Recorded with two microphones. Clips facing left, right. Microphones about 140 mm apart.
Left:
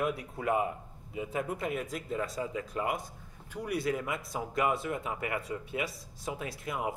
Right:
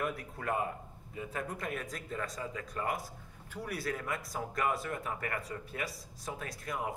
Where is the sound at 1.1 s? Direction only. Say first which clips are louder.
Left 5 dB; 15° left (ahead or behind).